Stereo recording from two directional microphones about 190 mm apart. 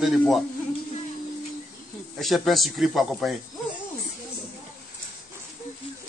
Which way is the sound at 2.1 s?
Centre (ahead or behind).